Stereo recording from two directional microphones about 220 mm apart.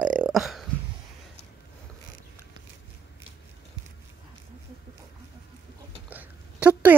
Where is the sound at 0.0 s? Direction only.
5° right (ahead or behind).